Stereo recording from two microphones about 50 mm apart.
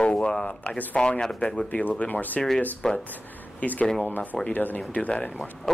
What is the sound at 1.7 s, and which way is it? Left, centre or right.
Speech, left.